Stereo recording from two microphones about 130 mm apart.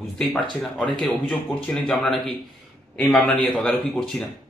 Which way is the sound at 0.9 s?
5° left (ahead or behind).